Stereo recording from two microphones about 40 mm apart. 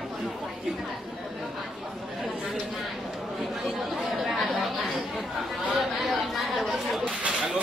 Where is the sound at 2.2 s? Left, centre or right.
Centre.